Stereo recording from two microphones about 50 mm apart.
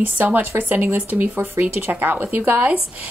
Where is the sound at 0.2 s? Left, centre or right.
Right.